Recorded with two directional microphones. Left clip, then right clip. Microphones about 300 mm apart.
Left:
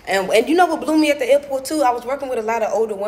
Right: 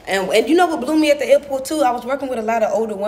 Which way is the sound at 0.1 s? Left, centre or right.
Centre.